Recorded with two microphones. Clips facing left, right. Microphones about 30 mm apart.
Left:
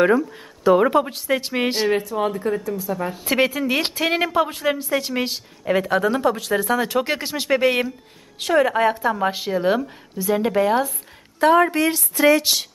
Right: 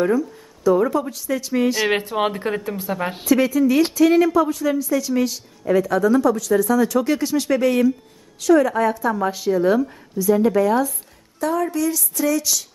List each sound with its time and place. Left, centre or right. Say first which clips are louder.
0.0 s speech: left 2 dB; left
1.9 s a woman's voice: right 1 dB; right
3.3 s speech: right 3 dB; left
11.3 s a woman's voice: left 6 dB; left